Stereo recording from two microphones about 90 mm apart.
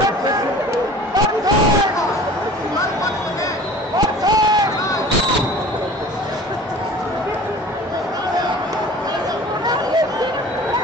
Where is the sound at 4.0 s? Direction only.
50° right (ahead or behind).